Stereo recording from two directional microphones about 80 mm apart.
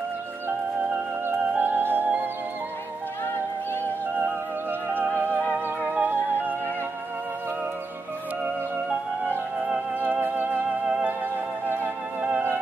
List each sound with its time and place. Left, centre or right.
1.5 s music: right
4.2 s music: right
9.9 s music: right